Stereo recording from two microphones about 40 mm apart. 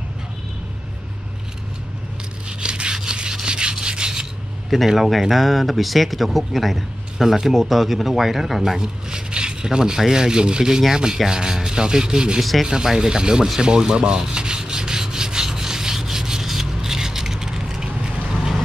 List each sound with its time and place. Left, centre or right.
2.6 s rub: right
4.6 s speech: centre
8.7 s speech: centre
12.4 s speech: centre
12.6 s speech: centre
14.2 s rub: right